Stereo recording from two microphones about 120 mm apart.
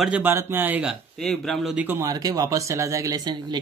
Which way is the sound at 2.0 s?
30° right (ahead or behind).